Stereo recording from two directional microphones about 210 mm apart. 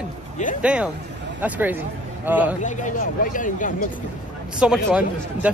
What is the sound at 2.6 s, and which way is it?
Speech, 35° left (ahead or behind).